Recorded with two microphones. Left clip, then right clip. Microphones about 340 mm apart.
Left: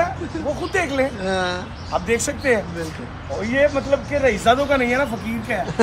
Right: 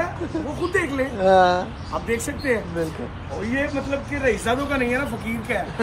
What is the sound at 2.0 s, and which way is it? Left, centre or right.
Speech, centre.